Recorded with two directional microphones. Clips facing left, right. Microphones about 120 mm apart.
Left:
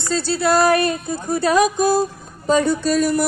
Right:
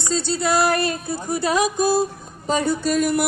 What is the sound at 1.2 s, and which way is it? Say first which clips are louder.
Speech: left 4 dB; 15° right (ahead or behind).